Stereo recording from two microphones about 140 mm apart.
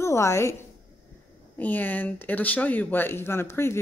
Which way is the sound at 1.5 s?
10° left (ahead or behind).